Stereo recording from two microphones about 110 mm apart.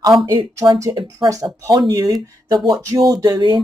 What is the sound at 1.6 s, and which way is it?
Speech, 35° right (ahead or behind).